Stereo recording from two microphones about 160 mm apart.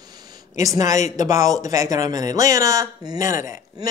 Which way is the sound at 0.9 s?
50° left (ahead or behind).